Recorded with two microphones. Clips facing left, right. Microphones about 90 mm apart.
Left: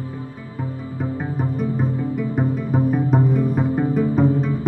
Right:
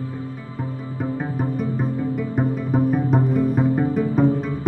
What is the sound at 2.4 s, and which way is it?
Music, centre (ahead or behind).